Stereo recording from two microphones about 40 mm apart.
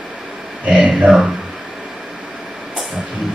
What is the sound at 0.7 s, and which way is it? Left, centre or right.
Speech, right.